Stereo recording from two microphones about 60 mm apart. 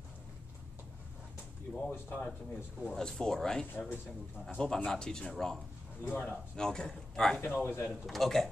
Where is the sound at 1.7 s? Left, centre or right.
Centre.